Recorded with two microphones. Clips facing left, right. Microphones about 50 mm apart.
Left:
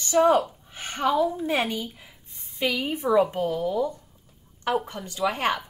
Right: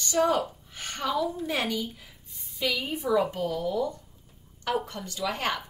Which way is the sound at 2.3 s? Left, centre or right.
Left.